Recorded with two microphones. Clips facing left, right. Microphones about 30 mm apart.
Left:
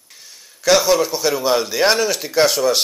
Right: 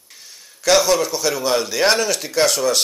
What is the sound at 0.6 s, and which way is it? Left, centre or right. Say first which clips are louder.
Speech: left 1 dB; centre.